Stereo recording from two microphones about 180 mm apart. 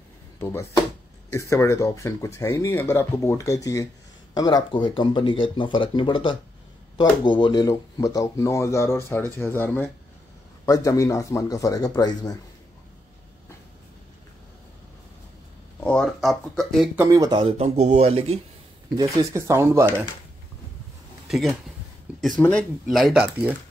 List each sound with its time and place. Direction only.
0.4 s speech: 15° left (ahead or behind)
15.8 s speech: 5° left (ahead or behind)
17.0 s speech: 20° right (ahead or behind)
18.9 s speech: 15° right (ahead or behind)
21.3 s speech: centre (ahead or behind)
22.1 s a sound: 5° right (ahead or behind)
22.4 s speech: 5° left (ahead or behind)